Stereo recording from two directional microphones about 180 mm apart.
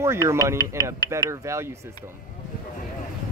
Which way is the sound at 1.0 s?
20° left (ahead or behind).